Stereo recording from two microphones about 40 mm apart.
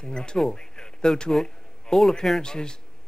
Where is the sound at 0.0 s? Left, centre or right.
Left.